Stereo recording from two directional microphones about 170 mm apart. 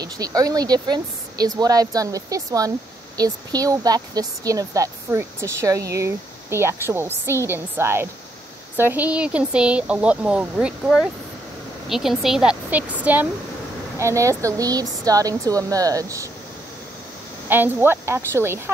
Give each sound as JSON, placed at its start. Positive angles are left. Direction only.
{"t": 0.0, "sound": "a woman's voice", "side_deg": -20}
{"t": 17.5, "sound": "a woman's voice", "side_deg": -10}